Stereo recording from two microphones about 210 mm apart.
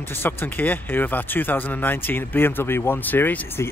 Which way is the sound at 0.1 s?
10° left (ahead or behind).